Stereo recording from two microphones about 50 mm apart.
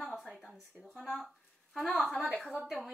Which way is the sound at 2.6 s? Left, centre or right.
Centre.